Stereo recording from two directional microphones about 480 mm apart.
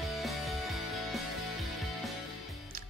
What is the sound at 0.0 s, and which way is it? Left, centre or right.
Music, centre.